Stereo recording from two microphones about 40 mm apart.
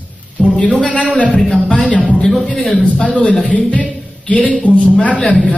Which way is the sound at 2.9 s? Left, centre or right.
Left.